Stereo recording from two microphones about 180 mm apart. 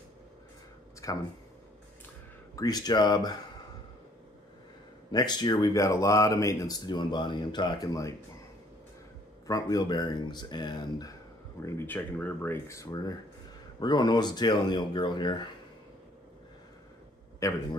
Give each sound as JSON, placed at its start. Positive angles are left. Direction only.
{"t": 1.0, "sound": "speech", "side_deg": 20}
{"t": 2.5, "sound": "speech", "side_deg": 20}
{"t": 5.1, "sound": "speech", "side_deg": 25}
{"t": 9.5, "sound": "speech", "side_deg": 20}
{"t": 11.6, "sound": "speech", "side_deg": 10}
{"t": 17.4, "sound": "speech", "side_deg": 15}